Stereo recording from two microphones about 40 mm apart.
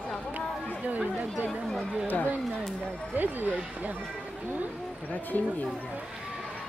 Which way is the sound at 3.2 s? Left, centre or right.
Right.